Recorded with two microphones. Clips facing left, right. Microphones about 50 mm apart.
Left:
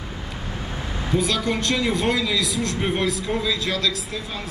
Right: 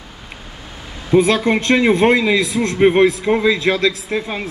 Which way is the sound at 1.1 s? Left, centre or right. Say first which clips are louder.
Right 9 dB; right.